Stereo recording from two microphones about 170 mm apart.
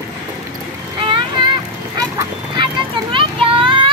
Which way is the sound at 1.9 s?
25° right (ahead or behind).